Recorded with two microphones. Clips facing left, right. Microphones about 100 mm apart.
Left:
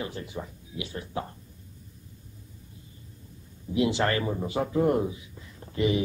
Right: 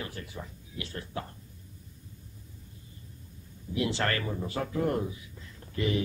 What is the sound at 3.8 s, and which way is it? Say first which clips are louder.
A man's voice: left 5 dB; 20° left (ahead or behind).